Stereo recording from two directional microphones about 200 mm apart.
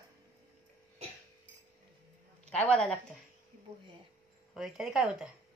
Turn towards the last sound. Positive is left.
turn(degrees=-5)  # may be behind; listen again after turning